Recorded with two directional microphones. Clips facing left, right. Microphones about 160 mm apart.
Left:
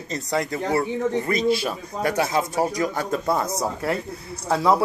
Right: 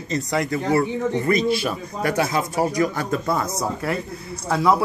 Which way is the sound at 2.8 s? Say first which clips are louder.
Right 2 dB; 25° left (ahead or behind).